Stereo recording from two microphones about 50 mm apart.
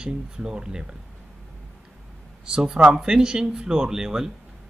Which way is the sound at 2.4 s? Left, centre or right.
Centre.